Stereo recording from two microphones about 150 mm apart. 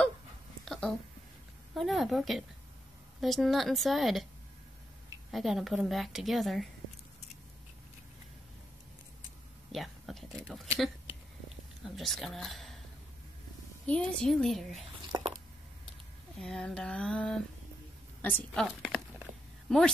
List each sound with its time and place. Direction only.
0.7 s a sound: 5° left (ahead or behind)
1.7 s a woman's voice: centre (ahead or behind)
5.3 s a woman's voice: centre (ahead or behind)
9.7 s a sound: centre (ahead or behind)
10.5 s a woman's voice: 5° right (ahead or behind)
11.9 s speech: centre (ahead or behind)
13.8 s a woman's voice: 5° left (ahead or behind)
15.0 s squish: 30° right (ahead or behind)
16.3 s a woman's voice: 5° left (ahead or behind)